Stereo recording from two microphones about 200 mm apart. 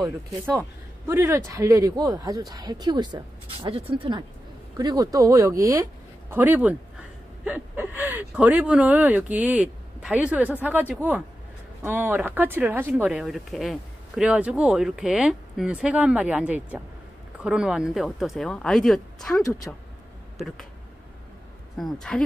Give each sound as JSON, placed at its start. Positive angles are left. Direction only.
{"t": 0.6, "sound": "speech", "side_deg": -10}
{"t": 21.8, "sound": "speech", "side_deg": 0}